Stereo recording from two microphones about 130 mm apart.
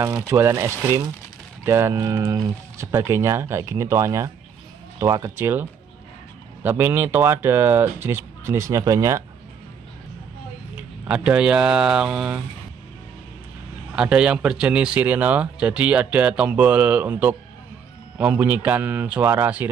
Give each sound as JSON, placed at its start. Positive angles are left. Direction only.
{"t": 0.0, "sound": "speech", "side_deg": -20}
{"t": 10.8, "sound": "speech", "side_deg": -10}
{"t": 13.9, "sound": "speech", "side_deg": -5}